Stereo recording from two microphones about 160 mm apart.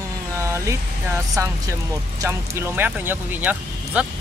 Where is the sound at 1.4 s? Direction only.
20° right (ahead or behind).